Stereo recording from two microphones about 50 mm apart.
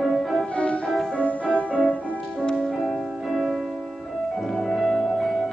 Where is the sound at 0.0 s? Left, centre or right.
Centre.